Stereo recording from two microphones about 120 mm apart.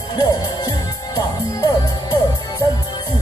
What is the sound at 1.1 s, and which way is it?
Music, 30° left (ahead or behind).